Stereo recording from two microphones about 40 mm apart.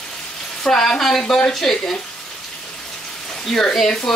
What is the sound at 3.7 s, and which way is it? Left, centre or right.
Speech, centre.